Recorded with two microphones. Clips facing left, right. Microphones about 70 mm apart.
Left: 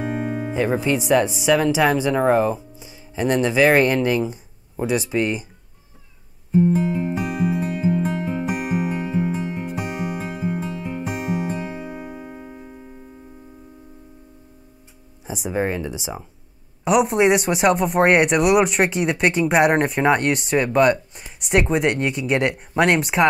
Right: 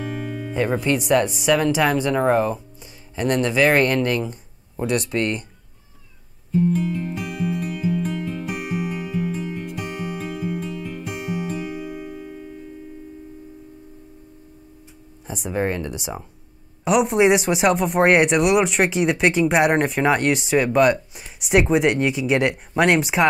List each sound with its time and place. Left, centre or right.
0.0 s speech: centre
6.5 s music: left
7.2 s music: centre
7.6 s music: left
8.5 s music: centre
9.0 s music: left
9.7 s music: centre
11.1 s music: centre
11.4 s music: left
15.2 s speech: centre